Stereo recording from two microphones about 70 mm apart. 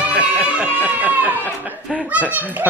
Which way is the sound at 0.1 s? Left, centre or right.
Centre.